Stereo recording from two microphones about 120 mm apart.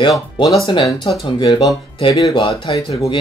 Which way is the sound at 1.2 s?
40° left (ahead or behind).